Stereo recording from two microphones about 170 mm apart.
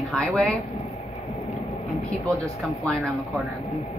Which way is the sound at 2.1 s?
20° right (ahead or behind).